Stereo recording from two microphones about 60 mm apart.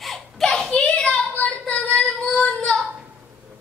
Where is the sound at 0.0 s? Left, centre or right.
Centre.